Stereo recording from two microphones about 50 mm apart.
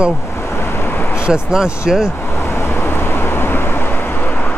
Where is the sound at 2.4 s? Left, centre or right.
Left.